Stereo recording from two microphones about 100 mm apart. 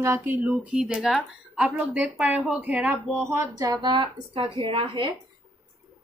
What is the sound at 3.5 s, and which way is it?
Speech, 40° right (ahead or behind).